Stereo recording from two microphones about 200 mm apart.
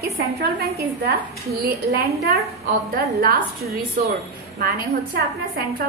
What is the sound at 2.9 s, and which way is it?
A woman's voice, 50° right (ahead or behind).